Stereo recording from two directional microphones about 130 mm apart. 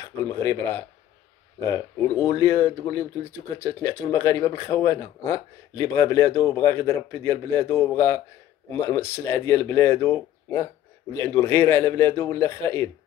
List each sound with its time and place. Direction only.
0.0 s speech: 20° left (ahead or behind)
2.1 s speech: 25° left (ahead or behind)